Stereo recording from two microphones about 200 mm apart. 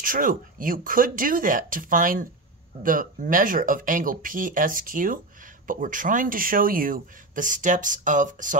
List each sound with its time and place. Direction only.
0.0 s speech: 45° right (ahead or behind)